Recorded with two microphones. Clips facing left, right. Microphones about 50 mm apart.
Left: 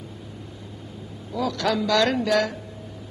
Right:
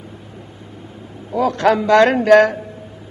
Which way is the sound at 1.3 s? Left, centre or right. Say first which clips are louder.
Right 9 dB; right.